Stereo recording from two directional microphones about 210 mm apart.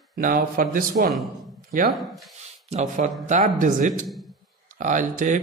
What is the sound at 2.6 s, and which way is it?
Speech, 35° right (ahead or behind).